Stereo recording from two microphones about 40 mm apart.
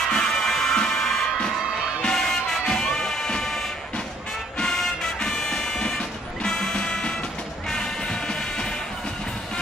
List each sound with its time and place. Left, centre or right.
0.1 s music: centre